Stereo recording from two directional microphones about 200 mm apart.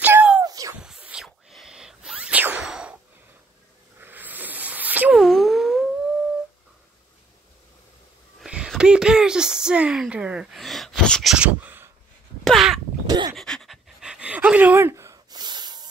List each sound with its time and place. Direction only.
0.0 s a sound: 10° right (ahead or behind)
0.7 s sneeze: 5° right (ahead or behind)
4.0 s sneeze: 10° right (ahead or behind)
8.4 s a sound: 5° right (ahead or behind)
12.4 s crow: centre (ahead or behind)
13.0 s dog: 20° right (ahead or behind)
13.4 s pant: centre (ahead or behind); by 15.9 s 20° right (ahead or behind)